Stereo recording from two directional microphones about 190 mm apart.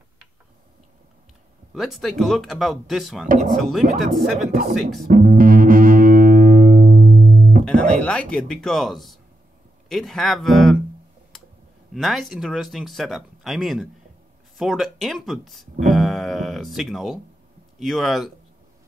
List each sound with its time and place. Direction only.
1.7 s speech: centre (ahead or behind)
4.5 s speech: 40° right (ahead or behind)
5.0 s music: 45° right (ahead or behind)
7.6 s speech: 5° left (ahead or behind)
11.9 s speech: centre (ahead or behind)